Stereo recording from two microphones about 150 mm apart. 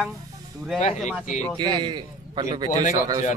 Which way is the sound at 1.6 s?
30° right (ahead or behind).